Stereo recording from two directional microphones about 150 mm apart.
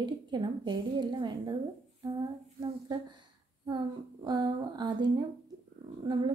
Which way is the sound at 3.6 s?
30° right (ahead or behind).